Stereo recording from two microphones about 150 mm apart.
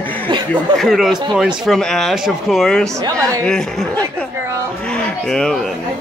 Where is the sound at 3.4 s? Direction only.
5° left (ahead or behind).